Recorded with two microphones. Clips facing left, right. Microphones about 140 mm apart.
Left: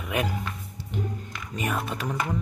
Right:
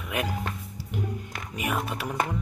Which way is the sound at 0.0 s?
Centre (ahead or behind).